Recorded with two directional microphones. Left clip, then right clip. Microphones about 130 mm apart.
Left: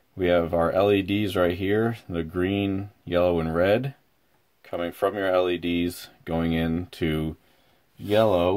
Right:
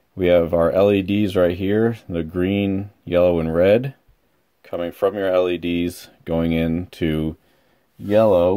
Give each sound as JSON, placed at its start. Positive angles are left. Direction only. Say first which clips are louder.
{"t": 0.2, "sound": "speech", "louder": "right 6 dB", "side_deg": -40}